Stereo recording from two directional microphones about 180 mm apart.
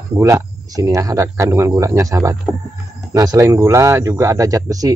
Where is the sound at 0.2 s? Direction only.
20° right (ahead or behind).